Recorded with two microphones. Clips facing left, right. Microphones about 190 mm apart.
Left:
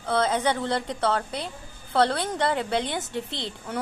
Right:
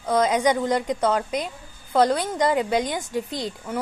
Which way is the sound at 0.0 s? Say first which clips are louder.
Right 4 dB; 10° right (ahead or behind).